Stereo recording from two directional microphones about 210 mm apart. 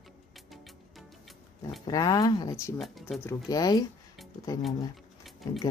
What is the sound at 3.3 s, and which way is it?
Speech, 20° left (ahead or behind).